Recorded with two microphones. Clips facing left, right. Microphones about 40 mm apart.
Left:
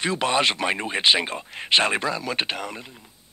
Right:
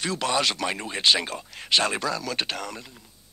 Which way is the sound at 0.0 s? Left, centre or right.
Left.